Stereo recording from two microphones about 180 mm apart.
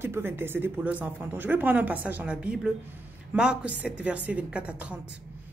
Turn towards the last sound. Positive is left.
turn(degrees=-5)  # may be behind; listen again after turning